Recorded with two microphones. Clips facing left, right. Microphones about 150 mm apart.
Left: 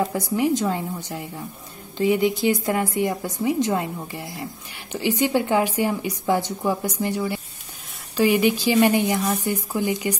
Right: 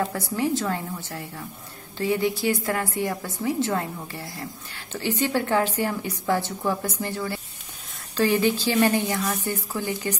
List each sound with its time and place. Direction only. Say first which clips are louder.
0.0 s speech: left 3 dB; 15° left (ahead or behind)